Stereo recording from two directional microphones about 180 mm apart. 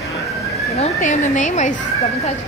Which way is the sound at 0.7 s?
35° left (ahead or behind).